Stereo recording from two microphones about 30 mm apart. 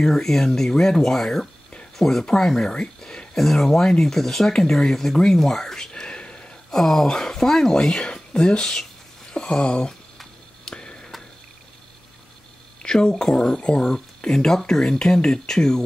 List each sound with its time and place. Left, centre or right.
0.0 s speech: centre
2.7 s speech: left
3.3 s speech: centre
5.9 s whispering: left
6.7 s speech: centre
7.8 s speech: left
10.6 s a sound: left
12.8 s speech: left
13.6 s speech: left
14.3 s speech: centre